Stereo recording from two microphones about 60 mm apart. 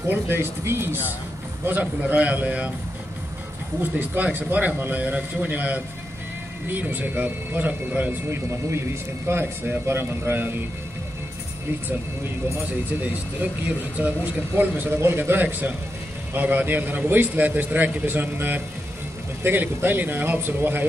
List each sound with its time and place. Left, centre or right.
0.1 s speech: right
1.8 s a man's voice: right
3.8 s a man's voice: right
8.3 s speech: right
13.0 s a man's voice: right